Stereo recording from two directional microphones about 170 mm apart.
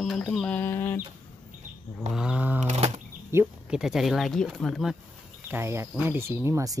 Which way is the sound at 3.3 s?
15° right (ahead or behind).